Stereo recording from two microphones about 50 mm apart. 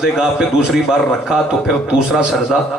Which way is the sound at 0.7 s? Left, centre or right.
Centre.